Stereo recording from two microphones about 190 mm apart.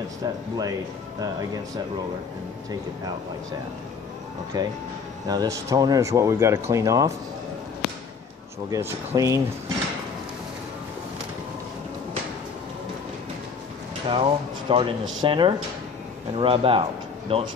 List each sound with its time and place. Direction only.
0.2 s speech: 20° right (ahead or behind)
4.5 s speech: 20° right (ahead or behind)
8.6 s speech: 15° right (ahead or behind)
14.0 s speech: 25° right (ahead or behind)